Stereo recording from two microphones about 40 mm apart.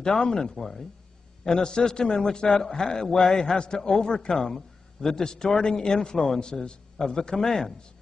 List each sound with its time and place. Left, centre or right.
0.0 s a man's voice: centre